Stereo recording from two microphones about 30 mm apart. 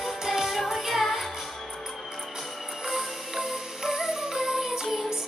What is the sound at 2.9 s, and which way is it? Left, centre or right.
Music, centre.